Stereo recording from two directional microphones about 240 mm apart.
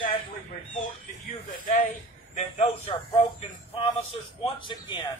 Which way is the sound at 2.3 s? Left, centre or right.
Left.